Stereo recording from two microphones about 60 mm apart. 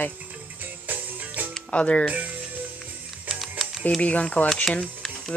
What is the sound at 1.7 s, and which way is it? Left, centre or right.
Speech, centre.